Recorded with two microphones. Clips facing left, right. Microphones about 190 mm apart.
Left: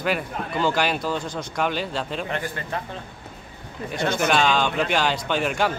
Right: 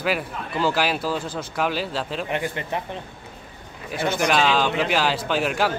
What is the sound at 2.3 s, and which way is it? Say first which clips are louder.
Speech: right 2 dB; 20° right (ahead or behind).